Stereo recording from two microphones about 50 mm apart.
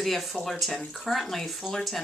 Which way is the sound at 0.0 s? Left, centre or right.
Centre.